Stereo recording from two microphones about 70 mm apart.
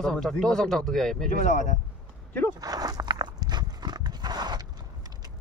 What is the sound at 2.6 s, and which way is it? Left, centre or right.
Horse, right.